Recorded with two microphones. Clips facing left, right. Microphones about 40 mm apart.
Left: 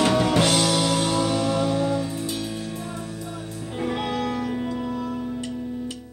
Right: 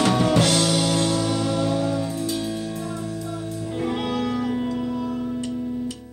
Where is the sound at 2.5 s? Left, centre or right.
Centre.